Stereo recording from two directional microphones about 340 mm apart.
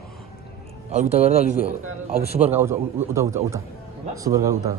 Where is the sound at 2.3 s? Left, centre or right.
Centre.